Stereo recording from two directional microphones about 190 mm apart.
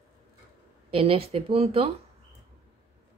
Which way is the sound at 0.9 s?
30° right (ahead or behind).